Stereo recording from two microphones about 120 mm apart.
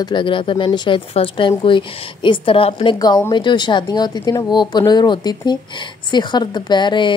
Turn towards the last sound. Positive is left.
turn(degrees=40)  # may be behind; listen again after turning